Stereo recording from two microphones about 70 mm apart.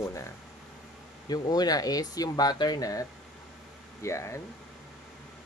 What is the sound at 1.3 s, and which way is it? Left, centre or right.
Speech, left.